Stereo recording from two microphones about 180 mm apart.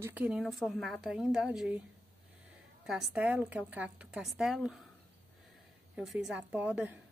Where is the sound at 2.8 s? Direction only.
Centre (ahead or behind).